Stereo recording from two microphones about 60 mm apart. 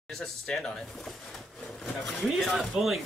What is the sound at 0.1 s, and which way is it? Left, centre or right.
Speech, centre.